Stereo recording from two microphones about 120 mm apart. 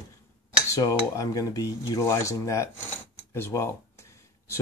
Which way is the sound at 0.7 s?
30° left (ahead or behind).